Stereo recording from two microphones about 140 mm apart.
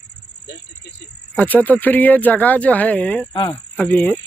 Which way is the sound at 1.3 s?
10° left (ahead or behind).